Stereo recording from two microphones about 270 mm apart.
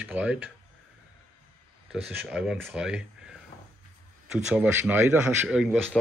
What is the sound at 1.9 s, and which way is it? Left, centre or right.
Speech, centre.